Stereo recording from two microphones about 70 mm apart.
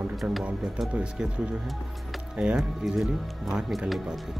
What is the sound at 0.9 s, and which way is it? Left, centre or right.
Speech, centre.